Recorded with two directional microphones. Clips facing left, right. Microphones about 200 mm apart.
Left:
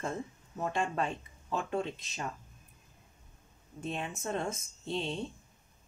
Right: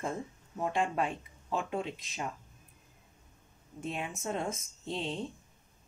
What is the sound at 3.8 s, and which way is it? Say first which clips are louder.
Speech: even; 10° right (ahead or behind).